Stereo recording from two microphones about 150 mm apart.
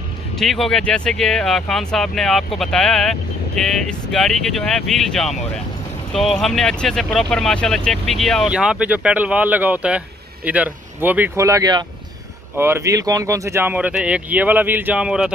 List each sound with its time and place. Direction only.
0.4 s speech: centre (ahead or behind)